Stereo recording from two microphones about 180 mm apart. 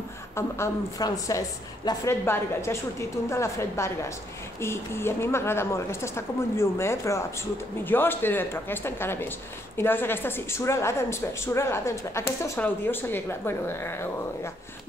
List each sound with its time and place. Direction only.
0.4 s a woman's voice: 15° left (ahead or behind)